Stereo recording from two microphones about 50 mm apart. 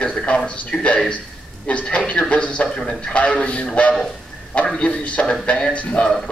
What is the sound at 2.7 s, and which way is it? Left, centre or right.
A man's voice, centre.